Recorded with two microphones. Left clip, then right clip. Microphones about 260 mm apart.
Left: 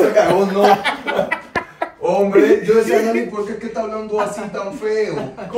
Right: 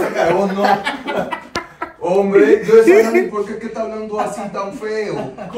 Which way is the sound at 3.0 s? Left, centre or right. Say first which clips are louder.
Right 4 dB; centre.